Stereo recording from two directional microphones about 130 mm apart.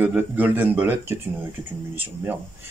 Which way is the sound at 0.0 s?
15° right (ahead or behind).